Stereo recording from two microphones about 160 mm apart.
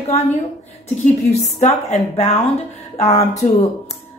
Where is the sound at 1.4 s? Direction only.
45° left (ahead or behind).